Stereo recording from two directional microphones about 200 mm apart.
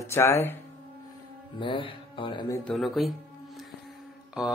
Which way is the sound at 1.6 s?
25° left (ahead or behind).